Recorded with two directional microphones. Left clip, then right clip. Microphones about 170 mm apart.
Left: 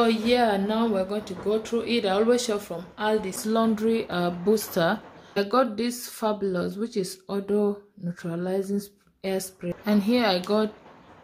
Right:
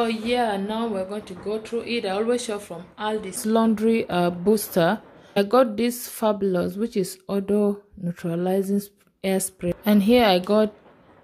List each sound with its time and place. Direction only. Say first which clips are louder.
0.0 s speech: left 1 dB; 5° left (ahead or behind)
3.3 s speech: right 3 dB; 35° right (ahead or behind)